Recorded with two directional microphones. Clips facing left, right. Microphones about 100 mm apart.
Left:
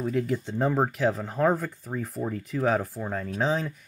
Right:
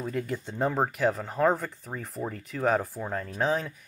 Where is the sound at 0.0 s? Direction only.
Centre (ahead or behind).